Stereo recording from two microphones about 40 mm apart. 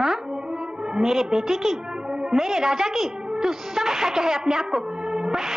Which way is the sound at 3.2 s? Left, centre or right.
Right.